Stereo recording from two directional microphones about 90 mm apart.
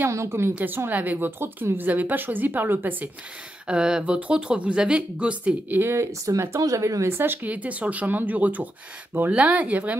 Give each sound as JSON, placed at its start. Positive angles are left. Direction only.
{"t": 0.0, "sound": "a woman's voice", "side_deg": -30}